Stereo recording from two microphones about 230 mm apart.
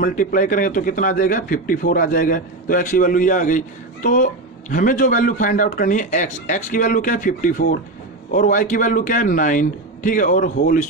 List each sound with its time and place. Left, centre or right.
0.0 s a man's voice: left